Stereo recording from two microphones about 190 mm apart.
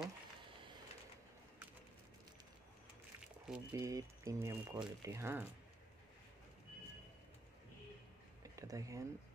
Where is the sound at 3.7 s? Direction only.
15° right (ahead or behind).